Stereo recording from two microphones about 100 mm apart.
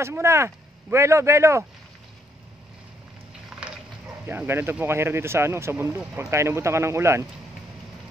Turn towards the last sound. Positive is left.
turn(degrees=-25)  # may be behind; listen again after turning